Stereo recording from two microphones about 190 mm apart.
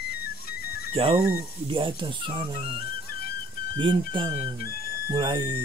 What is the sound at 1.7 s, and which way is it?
Speech, 25° right (ahead or behind).